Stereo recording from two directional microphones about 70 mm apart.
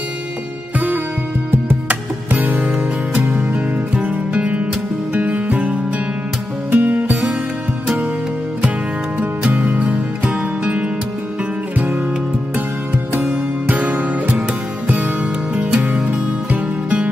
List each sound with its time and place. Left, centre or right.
1.5 s music: right
9.2 s music: right
12.5 s music: right
15.5 s music: centre